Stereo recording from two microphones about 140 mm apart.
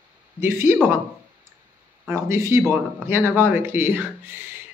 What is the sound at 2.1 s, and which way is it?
Speech, 20° right (ahead or behind).